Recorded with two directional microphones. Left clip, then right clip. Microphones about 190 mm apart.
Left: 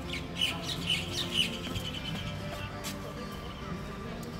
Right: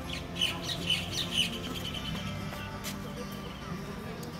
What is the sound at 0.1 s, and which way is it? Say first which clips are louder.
Squawk: even; 50° left (ahead or behind).